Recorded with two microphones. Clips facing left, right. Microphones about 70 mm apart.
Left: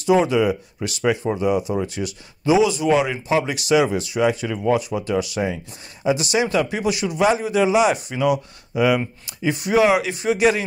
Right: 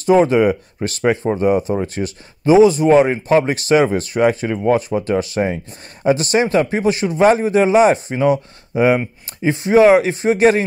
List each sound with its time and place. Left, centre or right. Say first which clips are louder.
0.0 s a man's voice: right 4 dB; right